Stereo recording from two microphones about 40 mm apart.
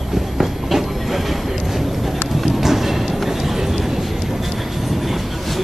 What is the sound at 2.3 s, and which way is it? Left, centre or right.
Clip-clop, centre.